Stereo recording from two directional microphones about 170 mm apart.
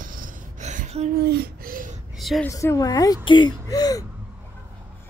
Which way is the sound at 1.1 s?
65° right (ahead or behind).